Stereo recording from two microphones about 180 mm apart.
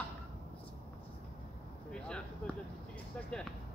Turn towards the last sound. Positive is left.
turn(degrees=5)  # may be behind; listen again after turning